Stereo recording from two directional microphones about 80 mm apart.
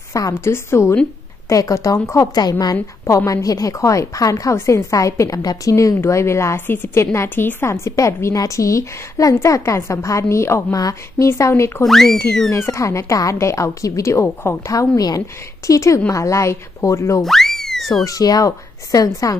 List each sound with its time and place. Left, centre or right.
0.3 s a woman's voice: left
11.8 s speech: centre
12.5 s a woman's voice: left
14.7 s a woman's voice: left
17.2 s a sound: centre
18.0 s a woman's voice: left